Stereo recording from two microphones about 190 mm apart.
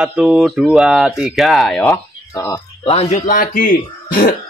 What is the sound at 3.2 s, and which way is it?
Speech, 45° left (ahead or behind).